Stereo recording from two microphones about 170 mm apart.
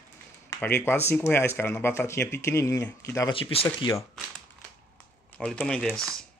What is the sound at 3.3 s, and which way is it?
Speech, 30° left (ahead or behind).